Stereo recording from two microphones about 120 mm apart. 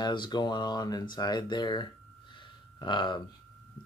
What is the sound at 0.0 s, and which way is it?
Speech, 40° left (ahead or behind).